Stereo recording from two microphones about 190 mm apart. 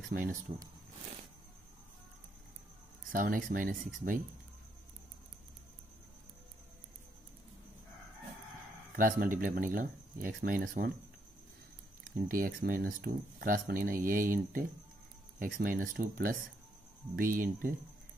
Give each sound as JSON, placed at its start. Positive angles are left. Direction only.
{"t": 0.1, "sound": "speech", "side_deg": -45}
{"t": 3.1, "sound": "speech", "side_deg": -45}
{"t": 8.9, "sound": "speech", "side_deg": -45}
{"t": 12.3, "sound": "speech", "side_deg": -45}